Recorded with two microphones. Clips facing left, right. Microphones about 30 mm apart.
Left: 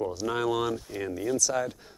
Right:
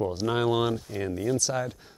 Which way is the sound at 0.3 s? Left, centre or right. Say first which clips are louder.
Right 2 dB; right.